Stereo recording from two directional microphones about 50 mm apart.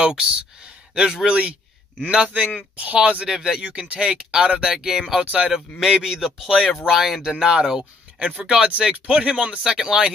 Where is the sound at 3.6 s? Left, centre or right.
Right; by 5.2 s centre.